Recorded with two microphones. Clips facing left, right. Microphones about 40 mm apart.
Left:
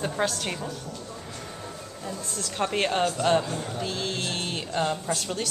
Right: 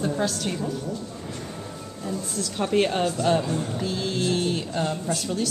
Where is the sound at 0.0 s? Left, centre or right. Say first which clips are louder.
Right 2 dB; left.